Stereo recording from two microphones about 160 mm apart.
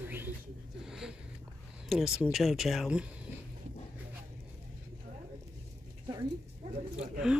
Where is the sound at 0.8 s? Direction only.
5° right (ahead or behind).